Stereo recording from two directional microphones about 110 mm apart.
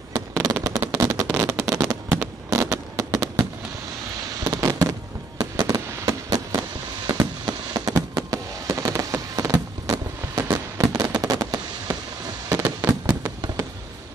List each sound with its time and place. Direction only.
0.1 s fireworks: 30° right (ahead or behind)